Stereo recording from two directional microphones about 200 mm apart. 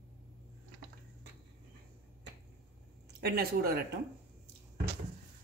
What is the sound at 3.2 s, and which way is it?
Speech, 50° right (ahead or behind).